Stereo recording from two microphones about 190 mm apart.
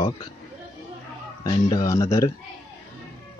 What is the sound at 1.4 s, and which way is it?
Speech, 20° left (ahead or behind).